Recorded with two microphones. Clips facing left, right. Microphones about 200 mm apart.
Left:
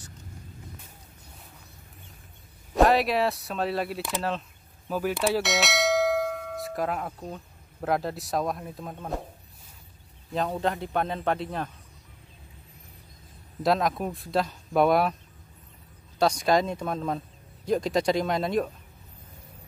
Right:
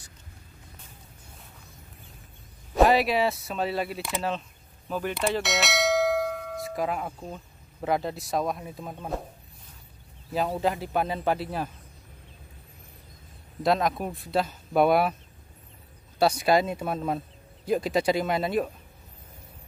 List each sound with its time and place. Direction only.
2.7 s speech: centre (ahead or behind)
10.3 s speech: 5° right (ahead or behind)
13.6 s speech: centre (ahead or behind)
16.2 s speech: 5° right (ahead or behind)